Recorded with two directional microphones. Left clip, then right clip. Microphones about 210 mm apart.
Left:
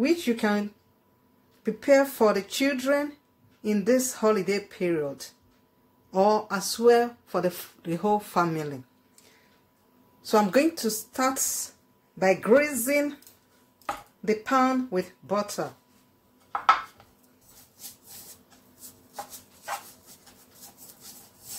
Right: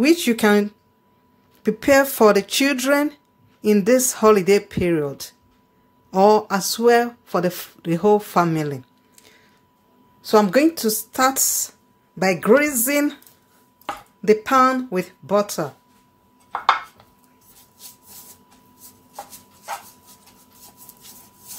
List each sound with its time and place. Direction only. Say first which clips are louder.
0.0 s speech: right 8 dB; 35° right (ahead or behind)
10.2 s speech: right 6 dB; 20° right (ahead or behind)
14.2 s speech: right 8 dB; 30° right (ahead or behind)